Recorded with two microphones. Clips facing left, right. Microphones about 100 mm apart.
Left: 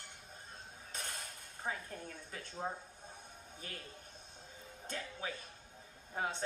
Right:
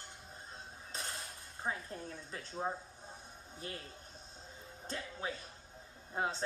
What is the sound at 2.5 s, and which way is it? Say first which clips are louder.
Speech: right 3 dB; 20° right (ahead or behind).